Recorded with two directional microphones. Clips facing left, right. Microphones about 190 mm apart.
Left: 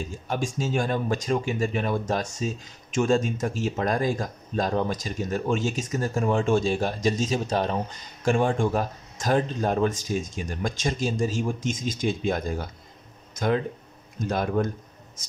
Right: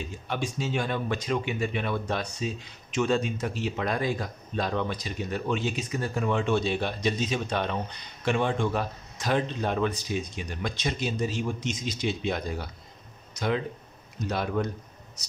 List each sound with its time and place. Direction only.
0.0 s speech: 45° left (ahead or behind)